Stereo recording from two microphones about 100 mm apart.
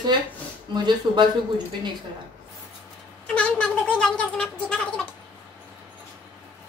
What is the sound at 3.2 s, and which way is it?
Speech, 10° left (ahead or behind).